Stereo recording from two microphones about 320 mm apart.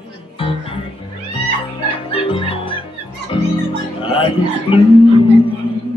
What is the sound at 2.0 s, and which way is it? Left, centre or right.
Music, centre.